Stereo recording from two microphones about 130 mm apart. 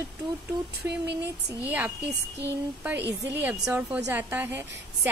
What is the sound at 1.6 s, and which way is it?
A woman's voice, 15° right (ahead or behind).